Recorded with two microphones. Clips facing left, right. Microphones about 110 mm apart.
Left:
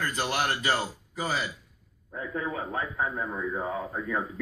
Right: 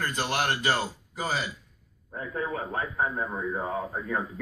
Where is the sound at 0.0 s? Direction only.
35° right (ahead or behind).